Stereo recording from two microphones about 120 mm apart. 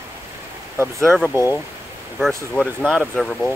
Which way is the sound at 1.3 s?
25° left (ahead or behind).